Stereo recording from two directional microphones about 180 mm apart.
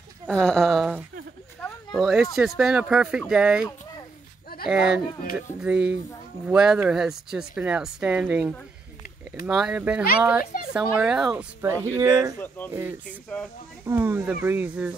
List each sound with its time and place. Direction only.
0.3 s speech: 5° left (ahead or behind)
1.6 s a sound: centre (ahead or behind)
2.3 s speech: centre (ahead or behind)
10.4 s speech: 50° left (ahead or behind)
10.7 s speech: 5° right (ahead or behind)
11.6 s speech: 15° right (ahead or behind)
12.4 s speech: 10° left (ahead or behind)
13.8 s speech: 10° right (ahead or behind)